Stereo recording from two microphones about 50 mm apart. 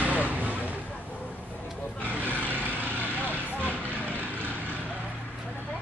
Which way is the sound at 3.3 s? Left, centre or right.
Left.